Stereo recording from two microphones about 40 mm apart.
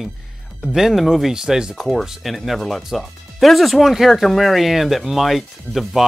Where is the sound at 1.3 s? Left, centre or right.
Centre.